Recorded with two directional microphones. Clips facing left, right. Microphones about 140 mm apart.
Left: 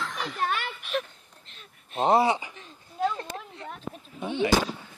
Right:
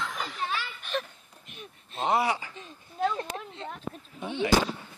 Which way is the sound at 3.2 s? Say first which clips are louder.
Right 2 dB; 20° right (ahead or behind).